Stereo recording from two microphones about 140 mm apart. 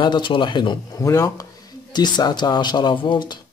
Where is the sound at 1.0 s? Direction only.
20° left (ahead or behind).